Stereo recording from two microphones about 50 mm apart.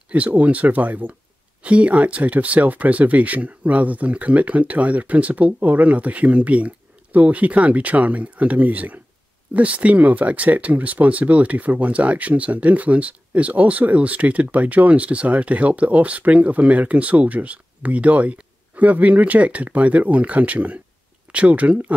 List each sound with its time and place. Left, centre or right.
0.1 s speech: right